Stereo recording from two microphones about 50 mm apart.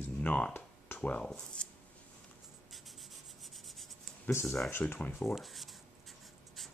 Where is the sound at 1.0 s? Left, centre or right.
Left.